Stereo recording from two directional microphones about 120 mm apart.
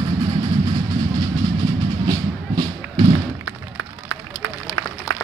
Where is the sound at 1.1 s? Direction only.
30° right (ahead or behind).